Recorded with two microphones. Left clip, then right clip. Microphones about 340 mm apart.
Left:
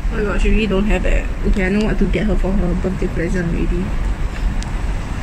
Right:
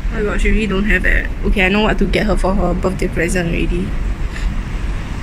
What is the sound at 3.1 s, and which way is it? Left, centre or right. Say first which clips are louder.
Speech: right 4 dB; centre.